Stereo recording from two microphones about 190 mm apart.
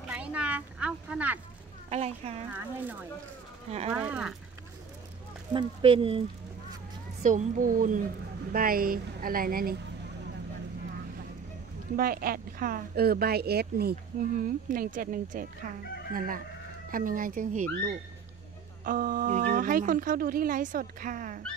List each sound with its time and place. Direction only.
0.1 s speech: 5° right (ahead or behind)
1.9 s speech: 35° right (ahead or behind)
2.5 s speech: 10° right (ahead or behind)
5.5 s speech: 25° right (ahead or behind)
7.2 s speech: 45° right (ahead or behind)
12.0 s speech: 50° right (ahead or behind)